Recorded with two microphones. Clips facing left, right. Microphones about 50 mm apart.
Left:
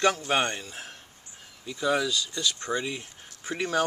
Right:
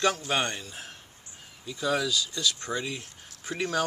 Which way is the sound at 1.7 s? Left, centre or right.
Centre.